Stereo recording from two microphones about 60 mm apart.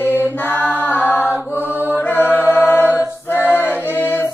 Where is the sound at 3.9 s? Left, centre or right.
Left.